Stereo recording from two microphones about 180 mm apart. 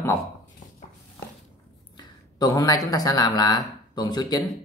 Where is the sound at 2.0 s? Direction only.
20° left (ahead or behind).